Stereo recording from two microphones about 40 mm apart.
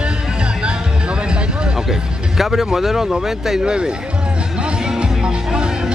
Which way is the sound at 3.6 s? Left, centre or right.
Right.